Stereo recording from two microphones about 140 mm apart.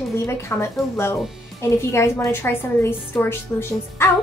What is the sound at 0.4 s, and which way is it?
A woman's voice, 20° left (ahead or behind).